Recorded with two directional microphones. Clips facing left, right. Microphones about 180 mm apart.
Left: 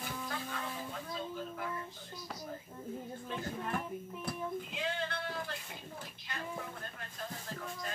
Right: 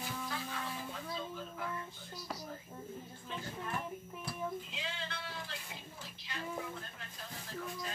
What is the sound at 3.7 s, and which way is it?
Music, 50° left (ahead or behind).